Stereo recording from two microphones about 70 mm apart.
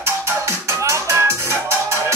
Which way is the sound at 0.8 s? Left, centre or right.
Right.